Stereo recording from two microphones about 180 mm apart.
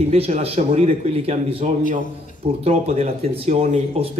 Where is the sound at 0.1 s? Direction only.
35° right (ahead or behind).